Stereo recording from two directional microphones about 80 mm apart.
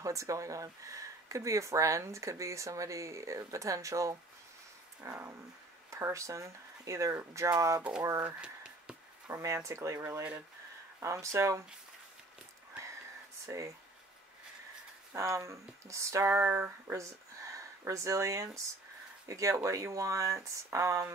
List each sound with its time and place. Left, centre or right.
0.0 s speech: right
8.4 s a sound: centre
9.3 s speech: right
13.5 s speech: right
15.1 s speech: right